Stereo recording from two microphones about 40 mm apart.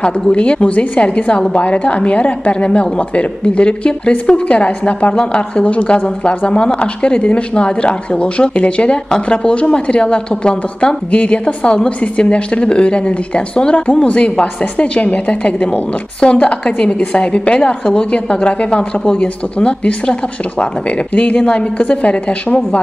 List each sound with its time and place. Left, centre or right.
0.0 s a woman's voice: left
6.0 s a woman's voice: left